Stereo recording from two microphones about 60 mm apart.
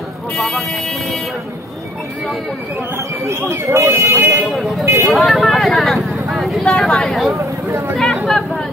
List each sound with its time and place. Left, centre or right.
0.4 s speech: centre
3.3 s speech: right
4.2 s speech: right
4.5 s speech: centre